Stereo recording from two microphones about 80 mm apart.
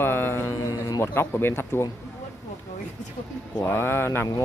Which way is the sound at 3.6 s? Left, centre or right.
Left.